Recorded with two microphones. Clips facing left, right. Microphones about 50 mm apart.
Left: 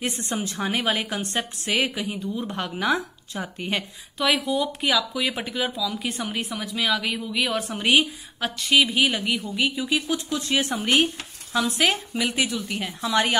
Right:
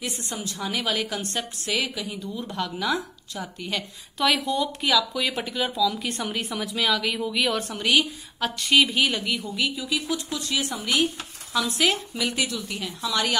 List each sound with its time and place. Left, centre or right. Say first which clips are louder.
0.0 s speech: left 4 dB; left
4.2 s speech: even; centre
7.8 s a woman's voice: left 2 dB; left
8.4 s speech: even; centre
9.6 s speech: left 5 dB; left
11.5 s a woman's voice: left 1 dB; left